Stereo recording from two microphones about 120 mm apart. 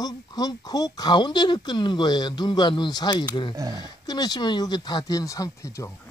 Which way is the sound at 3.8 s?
35° left (ahead or behind).